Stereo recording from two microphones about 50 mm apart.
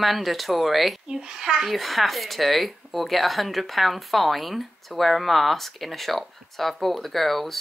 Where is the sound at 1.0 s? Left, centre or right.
Centre.